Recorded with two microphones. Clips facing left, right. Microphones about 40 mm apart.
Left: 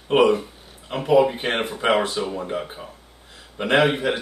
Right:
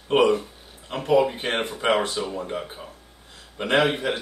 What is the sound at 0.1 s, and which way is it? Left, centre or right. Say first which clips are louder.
Speech: left 2 dB; centre.